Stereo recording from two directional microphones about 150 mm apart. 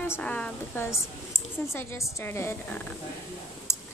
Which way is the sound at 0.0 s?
10° left (ahead or behind).